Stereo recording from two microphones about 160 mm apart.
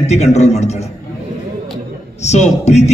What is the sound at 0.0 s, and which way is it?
Speech, 45° left (ahead or behind).